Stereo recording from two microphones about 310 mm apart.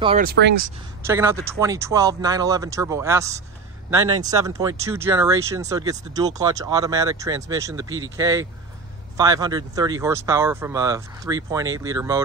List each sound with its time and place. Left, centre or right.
0.0 s speech: centre
0.3 s speech: right
1.0 s speech: centre